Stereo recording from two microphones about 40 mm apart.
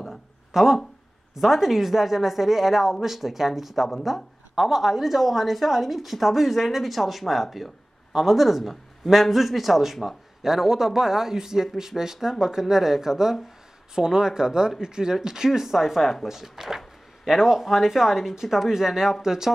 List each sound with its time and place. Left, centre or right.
0.5 s a woman's voice: centre